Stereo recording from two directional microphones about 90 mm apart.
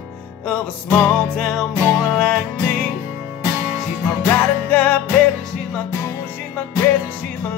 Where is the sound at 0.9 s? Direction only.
10° left (ahead or behind).